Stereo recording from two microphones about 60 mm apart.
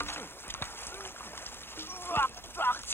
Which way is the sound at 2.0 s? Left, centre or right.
Left.